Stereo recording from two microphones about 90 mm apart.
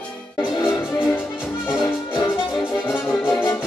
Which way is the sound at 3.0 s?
25° left (ahead or behind).